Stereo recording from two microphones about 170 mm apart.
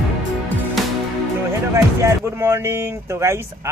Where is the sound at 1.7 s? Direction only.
15° right (ahead or behind).